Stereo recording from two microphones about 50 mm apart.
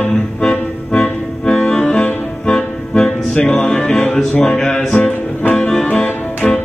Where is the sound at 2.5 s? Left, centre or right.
Centre.